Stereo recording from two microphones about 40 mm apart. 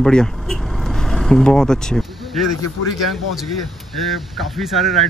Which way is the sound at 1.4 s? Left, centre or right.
Centre.